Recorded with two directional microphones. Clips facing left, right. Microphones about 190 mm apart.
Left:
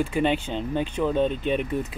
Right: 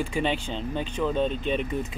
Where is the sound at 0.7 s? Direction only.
10° left (ahead or behind).